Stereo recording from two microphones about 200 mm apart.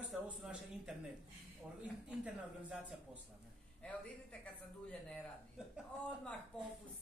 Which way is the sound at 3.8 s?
5° left (ahead or behind).